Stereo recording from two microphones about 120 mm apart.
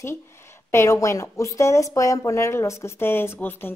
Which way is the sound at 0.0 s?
20° left (ahead or behind).